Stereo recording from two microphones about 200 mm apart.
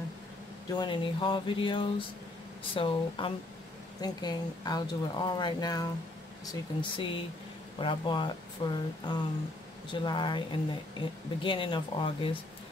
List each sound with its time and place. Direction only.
0.7 s speech: 25° left (ahead or behind)